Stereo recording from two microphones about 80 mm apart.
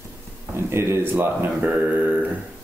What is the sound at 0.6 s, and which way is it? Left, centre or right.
Speech, right.